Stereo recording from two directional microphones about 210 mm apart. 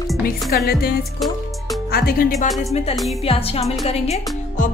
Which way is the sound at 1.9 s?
45° left (ahead or behind).